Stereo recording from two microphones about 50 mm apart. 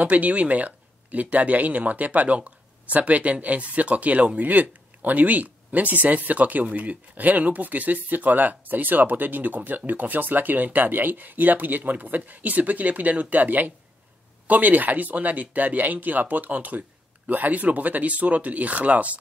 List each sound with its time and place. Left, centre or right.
0.0 s speech: right